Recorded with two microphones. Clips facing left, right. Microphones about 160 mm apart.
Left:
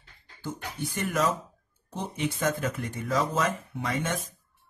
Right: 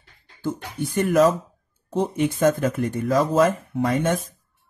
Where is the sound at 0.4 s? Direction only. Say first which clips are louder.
Right 7 dB; 55° right (ahead or behind).